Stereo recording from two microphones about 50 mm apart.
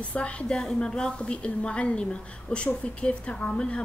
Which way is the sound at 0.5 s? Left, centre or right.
Centre.